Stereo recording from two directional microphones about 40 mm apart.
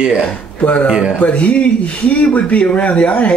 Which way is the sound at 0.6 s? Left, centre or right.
Left.